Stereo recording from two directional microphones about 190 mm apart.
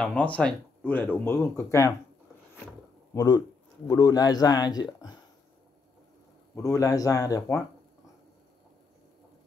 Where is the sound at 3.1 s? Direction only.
20° left (ahead or behind).